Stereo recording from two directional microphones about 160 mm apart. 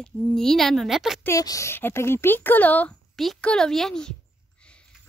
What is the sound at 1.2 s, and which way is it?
Speech, 20° left (ahead or behind).